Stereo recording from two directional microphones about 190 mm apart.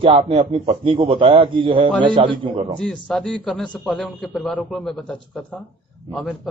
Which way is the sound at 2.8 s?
5° left (ahead or behind).